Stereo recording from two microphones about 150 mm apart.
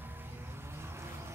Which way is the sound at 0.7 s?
15° right (ahead or behind).